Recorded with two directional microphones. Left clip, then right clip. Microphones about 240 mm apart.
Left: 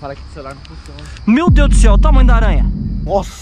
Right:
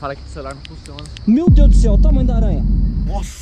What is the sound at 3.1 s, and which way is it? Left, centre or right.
Speech, centre.